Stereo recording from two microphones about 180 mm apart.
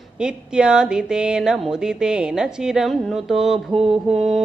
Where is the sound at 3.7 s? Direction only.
30° right (ahead or behind).